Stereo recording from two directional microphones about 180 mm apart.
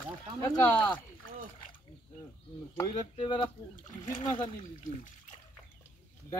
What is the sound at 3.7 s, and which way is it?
Speech, 45° left (ahead or behind).